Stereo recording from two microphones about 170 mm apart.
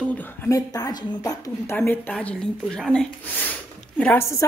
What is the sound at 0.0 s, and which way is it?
A woman's voice, 10° left (ahead or behind).